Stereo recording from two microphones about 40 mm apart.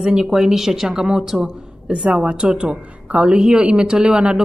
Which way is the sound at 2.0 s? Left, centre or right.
Right.